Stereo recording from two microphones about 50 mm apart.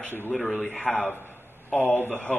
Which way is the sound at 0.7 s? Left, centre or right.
Left.